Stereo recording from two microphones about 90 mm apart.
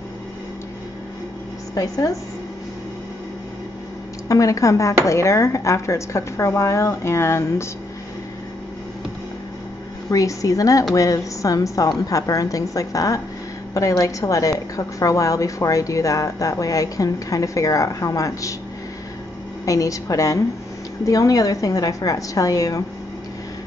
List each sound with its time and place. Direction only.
1.8 s a woman's voice: 40° left (ahead or behind)
4.3 s a woman's voice: 40° left (ahead or behind)
10.1 s a woman's voice: 40° left (ahead or behind)
19.6 s a woman's voice: 40° left (ahead or behind)